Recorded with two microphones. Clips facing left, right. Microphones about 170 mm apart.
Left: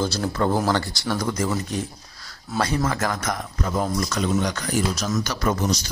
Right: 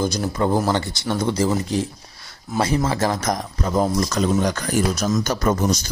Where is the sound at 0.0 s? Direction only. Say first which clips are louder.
Right 2 dB; 15° right (ahead or behind).